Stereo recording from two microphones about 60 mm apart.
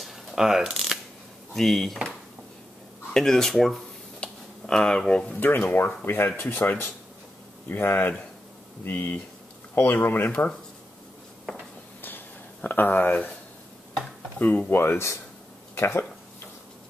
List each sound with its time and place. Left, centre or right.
0.0 s mechanisms: centre
1.5 s speech: centre
3.1 s speech: centre
4.2 s a sound: centre
5.4 s speech: left
12.6 s speech: left
14.4 s speech: left